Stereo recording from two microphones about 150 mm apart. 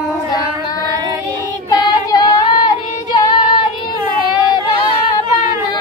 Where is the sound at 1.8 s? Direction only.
30° left (ahead or behind).